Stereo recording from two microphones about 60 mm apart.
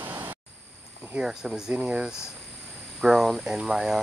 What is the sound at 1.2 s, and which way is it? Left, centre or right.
Speech, centre.